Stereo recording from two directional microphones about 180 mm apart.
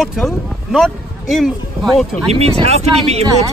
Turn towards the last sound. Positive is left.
turn(degrees=-35)  # may be behind; listen again after turning